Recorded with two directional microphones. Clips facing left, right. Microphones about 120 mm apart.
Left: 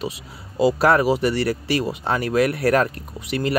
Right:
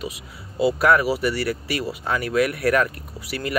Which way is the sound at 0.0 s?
30° left (ahead or behind).